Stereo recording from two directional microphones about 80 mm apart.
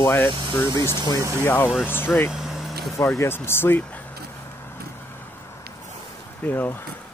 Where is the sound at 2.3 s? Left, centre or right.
Centre.